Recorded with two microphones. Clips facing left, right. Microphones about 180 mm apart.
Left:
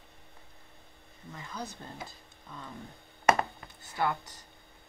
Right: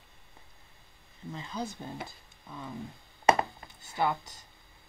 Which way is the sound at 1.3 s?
25° right (ahead or behind).